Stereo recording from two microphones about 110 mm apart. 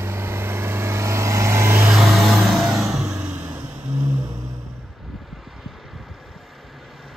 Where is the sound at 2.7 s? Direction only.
5° right (ahead or behind).